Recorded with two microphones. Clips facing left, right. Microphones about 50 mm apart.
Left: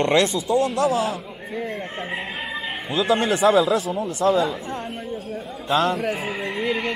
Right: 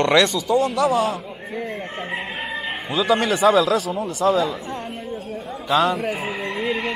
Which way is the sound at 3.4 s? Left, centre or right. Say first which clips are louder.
Right 1 dB; centre.